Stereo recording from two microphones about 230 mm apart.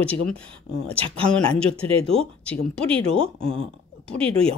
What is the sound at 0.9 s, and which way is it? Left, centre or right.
Speech, right.